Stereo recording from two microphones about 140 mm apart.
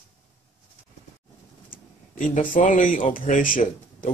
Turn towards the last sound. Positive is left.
turn(degrees=75)  # may be behind; listen again after turning